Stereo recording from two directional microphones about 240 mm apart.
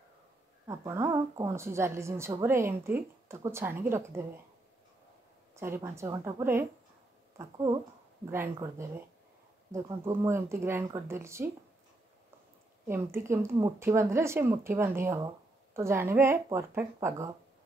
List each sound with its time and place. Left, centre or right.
0.7 s speech: centre
5.6 s speech: centre
12.8 s speech: centre